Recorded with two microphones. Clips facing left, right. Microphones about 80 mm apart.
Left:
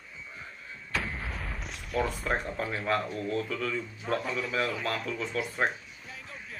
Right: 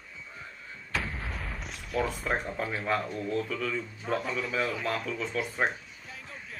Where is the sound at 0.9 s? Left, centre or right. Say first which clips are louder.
Even; centre.